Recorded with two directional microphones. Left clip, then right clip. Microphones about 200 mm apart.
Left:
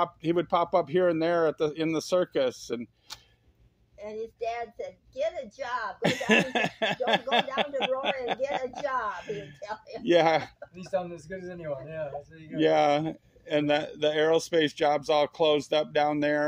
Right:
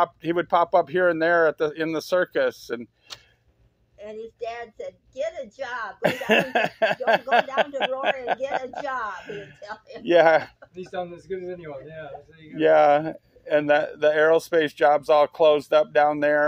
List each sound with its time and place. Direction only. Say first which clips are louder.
0.0 s speech: right 4 dB; 20° left (ahead or behind)
4.0 s a woman's voice: even; 40° left (ahead or behind)
5.9 s speech: right 4 dB; 20° left (ahead or behind)
11.2 s a man's voice: right 7 dB; 60° left (ahead or behind)
12.5 s speech: right 6 dB; 20° left (ahead or behind)